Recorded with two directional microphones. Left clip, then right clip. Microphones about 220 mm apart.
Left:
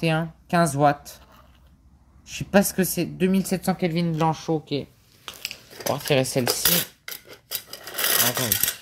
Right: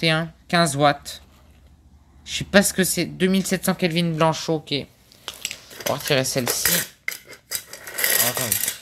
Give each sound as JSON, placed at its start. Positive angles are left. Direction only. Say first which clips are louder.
{"t": 0.0, "sound": "speech", "louder": "right 4 dB", "side_deg": -5}
{"t": 2.2, "sound": "speech", "louder": "right 3 dB", "side_deg": -5}
{"t": 5.2, "sound": "a sound", "louder": "right 3 dB", "side_deg": -15}
{"t": 5.9, "sound": "speech", "louder": "right 1 dB", "side_deg": 10}
{"t": 6.6, "sound": "cutlery", "louder": "right 1 dB", "side_deg": 10}
{"t": 7.8, "sound": "a sound", "louder": "right 1 dB", "side_deg": 20}